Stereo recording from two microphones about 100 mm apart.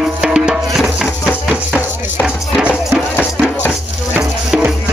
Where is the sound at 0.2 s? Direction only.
10° right (ahead or behind).